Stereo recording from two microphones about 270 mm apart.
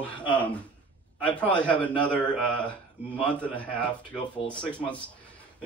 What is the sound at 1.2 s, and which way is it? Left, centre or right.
Speech, centre.